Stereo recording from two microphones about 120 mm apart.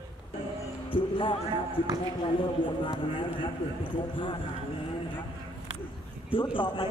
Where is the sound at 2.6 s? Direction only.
40° left (ahead or behind).